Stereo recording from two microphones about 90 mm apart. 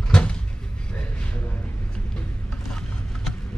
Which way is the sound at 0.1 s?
10° left (ahead or behind).